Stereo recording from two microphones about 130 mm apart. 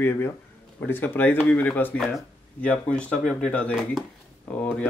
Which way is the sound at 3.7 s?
5° right (ahead or behind).